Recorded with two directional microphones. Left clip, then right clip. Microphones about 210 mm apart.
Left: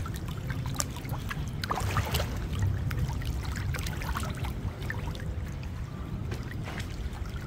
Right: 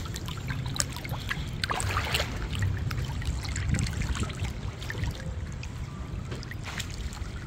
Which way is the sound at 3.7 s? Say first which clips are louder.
Left 2 dB; 20° left (ahead or behind).